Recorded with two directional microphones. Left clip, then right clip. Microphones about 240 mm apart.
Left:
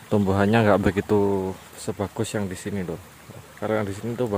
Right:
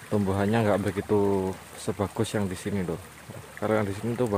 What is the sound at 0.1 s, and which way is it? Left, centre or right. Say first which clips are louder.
Speech: left 5 dB; centre.